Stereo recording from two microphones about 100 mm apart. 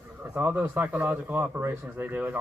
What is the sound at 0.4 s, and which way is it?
A man's voice, 20° right (ahead or behind).